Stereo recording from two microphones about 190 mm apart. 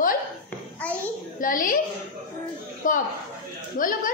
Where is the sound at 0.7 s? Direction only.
10° left (ahead or behind).